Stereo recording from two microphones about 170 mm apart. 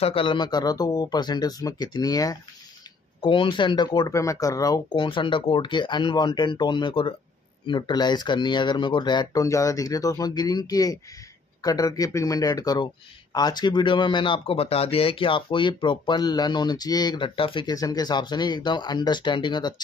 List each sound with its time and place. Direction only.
0.0 s speech: 30° left (ahead or behind)